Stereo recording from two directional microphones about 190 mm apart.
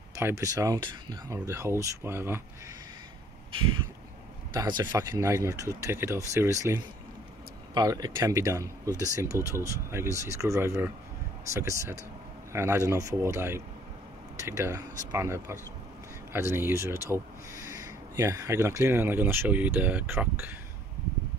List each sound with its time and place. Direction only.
0.1 s speech: 15° right (ahead or behind)
4.6 s speech: 20° right (ahead or behind)